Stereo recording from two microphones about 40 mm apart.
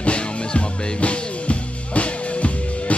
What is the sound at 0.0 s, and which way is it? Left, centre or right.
Music, left.